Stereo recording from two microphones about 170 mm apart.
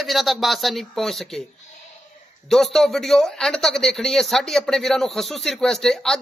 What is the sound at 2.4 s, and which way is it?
Speech, centre (ahead or behind).